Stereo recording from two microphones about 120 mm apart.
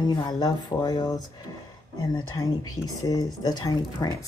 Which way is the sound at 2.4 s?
30° left (ahead or behind).